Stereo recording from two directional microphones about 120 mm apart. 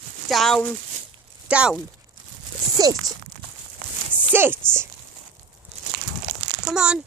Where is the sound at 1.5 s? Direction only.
10° right (ahead or behind).